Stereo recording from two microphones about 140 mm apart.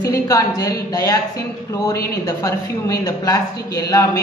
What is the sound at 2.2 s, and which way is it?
A woman's voice, 25° left (ahead or behind).